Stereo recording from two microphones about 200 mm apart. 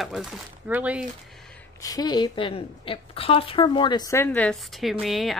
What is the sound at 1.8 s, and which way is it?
Speech, 20° left (ahead or behind).